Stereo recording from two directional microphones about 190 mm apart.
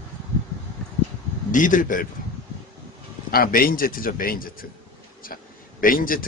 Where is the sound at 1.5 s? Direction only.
45° left (ahead or behind).